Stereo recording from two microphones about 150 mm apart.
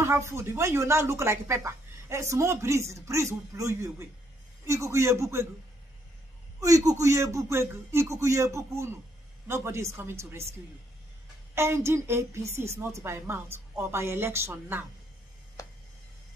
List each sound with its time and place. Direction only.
0.0 s speech: 15° right (ahead or behind)
6.6 s a woman's voice: 25° right (ahead or behind)
11.5 s a woman's voice: 15° right (ahead or behind)